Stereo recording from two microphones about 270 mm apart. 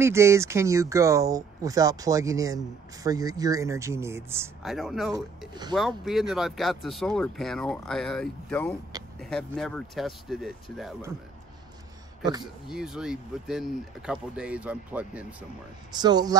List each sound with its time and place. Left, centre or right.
0.0 s speech: centre
5.5 s speech: centre
5.8 s speech: centre
12.6 s speech: centre